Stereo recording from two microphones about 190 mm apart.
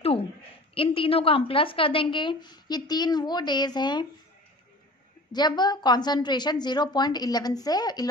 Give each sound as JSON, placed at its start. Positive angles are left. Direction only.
{"t": 0.7, "sound": "a woman's voice", "side_deg": 30}
{"t": 5.3, "sound": "a woman's voice", "side_deg": 20}